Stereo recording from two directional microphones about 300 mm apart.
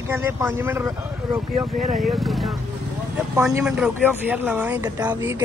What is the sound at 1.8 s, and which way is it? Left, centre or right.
Speech, right.